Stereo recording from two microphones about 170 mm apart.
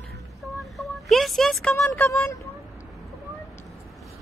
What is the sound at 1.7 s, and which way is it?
Speech, 15° left (ahead or behind).